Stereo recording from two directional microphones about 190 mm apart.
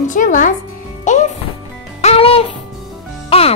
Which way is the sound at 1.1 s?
40° left (ahead or behind).